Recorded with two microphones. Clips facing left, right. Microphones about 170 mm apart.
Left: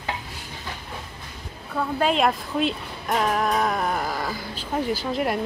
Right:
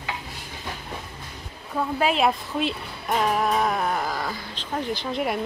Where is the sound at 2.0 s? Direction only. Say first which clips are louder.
Left 1 dB; 5° right (ahead or behind).